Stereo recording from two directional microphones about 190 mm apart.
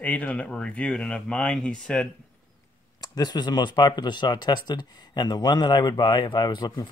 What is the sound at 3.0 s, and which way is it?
Speech, 20° left (ahead or behind).